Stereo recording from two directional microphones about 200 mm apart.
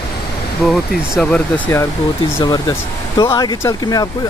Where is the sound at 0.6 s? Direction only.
Centre (ahead or behind).